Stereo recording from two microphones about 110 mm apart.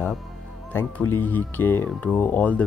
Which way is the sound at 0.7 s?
20° left (ahead or behind).